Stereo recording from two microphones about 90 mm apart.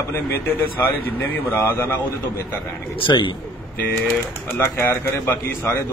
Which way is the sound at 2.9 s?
65° left (ahead or behind).